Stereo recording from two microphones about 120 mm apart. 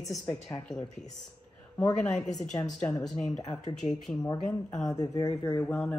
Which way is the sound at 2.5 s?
30° left (ahead or behind).